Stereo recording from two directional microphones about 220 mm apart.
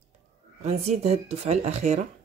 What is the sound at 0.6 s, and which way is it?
Speech, 30° right (ahead or behind).